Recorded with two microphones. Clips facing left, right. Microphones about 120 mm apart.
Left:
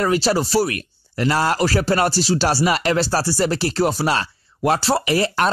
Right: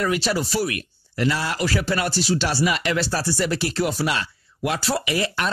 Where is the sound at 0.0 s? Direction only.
35° left (ahead or behind).